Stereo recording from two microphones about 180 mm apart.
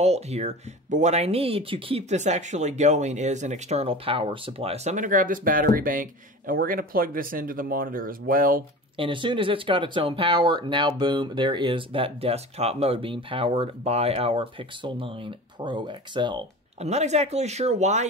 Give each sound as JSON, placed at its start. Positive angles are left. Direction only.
{"t": 0.0, "sound": "speech", "side_deg": -35}
{"t": 8.9, "sound": "speech", "side_deg": -30}
{"t": 16.8, "sound": "speech", "side_deg": -40}